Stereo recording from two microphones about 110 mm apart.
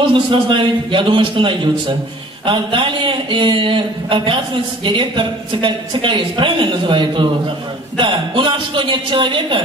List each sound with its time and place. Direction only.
0.0 s a woman's voice: 50° right (ahead or behind)